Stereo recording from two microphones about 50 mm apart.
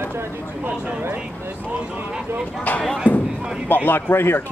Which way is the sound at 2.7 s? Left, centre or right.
Left.